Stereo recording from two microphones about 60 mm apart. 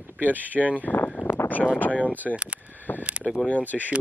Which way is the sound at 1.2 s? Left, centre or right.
Left.